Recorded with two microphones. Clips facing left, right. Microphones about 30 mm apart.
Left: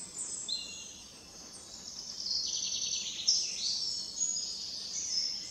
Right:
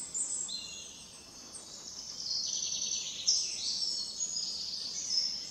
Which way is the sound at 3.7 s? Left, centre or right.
Centre.